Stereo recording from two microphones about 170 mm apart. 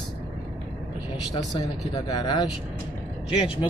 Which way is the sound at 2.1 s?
25° left (ahead or behind).